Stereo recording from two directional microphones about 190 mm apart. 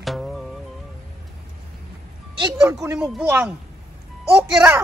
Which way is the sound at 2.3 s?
20° right (ahead or behind).